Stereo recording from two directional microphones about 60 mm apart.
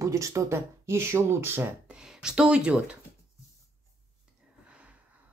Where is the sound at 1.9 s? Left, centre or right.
Centre.